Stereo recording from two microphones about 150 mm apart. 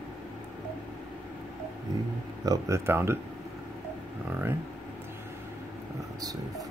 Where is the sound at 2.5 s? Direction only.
20° right (ahead or behind).